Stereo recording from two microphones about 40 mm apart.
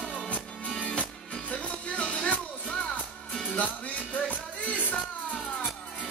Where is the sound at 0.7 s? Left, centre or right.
Left.